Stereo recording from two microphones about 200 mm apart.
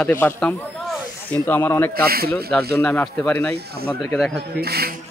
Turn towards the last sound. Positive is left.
turn(degrees=-50)  # may be behind; listen again after turning